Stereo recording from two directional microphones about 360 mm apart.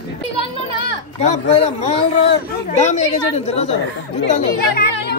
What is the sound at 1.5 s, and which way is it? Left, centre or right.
Speech, centre.